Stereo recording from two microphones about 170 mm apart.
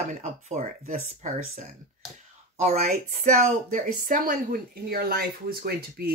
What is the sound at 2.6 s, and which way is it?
Speech, 45° right (ahead or behind).